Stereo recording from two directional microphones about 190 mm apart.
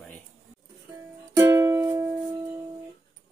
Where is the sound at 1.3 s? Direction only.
15° right (ahead or behind).